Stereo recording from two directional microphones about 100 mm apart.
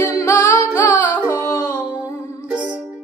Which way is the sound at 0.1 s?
30° left (ahead or behind).